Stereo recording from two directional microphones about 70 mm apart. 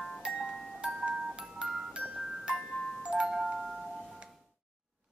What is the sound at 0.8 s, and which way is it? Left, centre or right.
Music, centre.